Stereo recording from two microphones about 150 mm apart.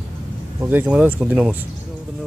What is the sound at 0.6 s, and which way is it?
Speech, 10° right (ahead or behind).